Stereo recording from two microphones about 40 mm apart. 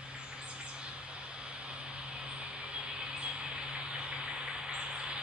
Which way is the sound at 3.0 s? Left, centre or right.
Right.